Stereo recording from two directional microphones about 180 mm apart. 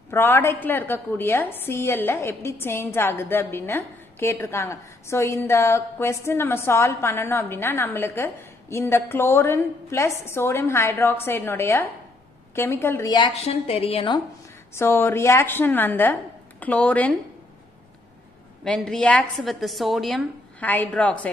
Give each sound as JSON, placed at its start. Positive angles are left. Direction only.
{"t": 0.1, "sound": "a woman's voice", "side_deg": 10}
{"t": 13.3, "sound": "a woman's voice", "side_deg": 35}
{"t": 14.7, "sound": "a woman's voice", "side_deg": 15}
{"t": 18.6, "sound": "a woman's voice", "side_deg": 5}